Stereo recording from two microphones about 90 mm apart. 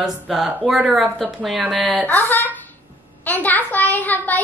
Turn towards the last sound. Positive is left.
turn(degrees=20)  # may be behind; listen again after turning